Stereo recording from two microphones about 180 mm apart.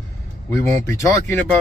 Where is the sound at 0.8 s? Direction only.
15° left (ahead or behind).